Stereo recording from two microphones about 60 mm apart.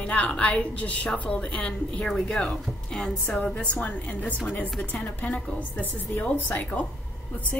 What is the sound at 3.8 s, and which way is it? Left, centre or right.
A woman's voice, left.